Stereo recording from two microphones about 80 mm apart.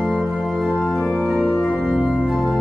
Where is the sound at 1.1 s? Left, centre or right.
Centre.